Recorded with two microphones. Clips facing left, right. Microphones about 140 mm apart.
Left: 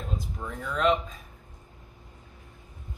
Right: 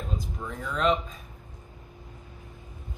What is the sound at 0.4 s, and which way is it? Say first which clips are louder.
Speech: left 1 dB; centre (ahead or behind).